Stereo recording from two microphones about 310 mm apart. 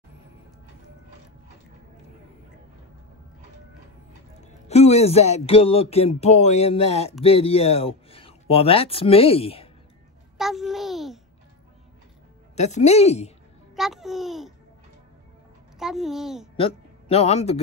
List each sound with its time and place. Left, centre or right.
4.4 s speech: left
10.3 s a sound: centre
12.5 s speech: left
13.7 s a child's voice: centre
15.8 s a child's voice: centre
16.5 s a man's voice: centre